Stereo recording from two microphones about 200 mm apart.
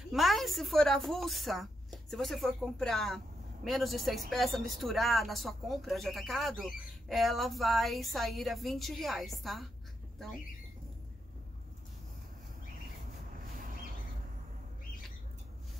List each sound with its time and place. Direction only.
0.1 s speech: centre (ahead or behind)